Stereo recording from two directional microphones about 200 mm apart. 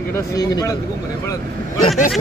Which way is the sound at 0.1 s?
15° left (ahead or behind).